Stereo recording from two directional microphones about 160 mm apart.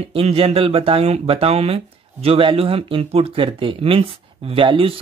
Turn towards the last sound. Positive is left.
turn(degrees=-35)  # may be behind; listen again after turning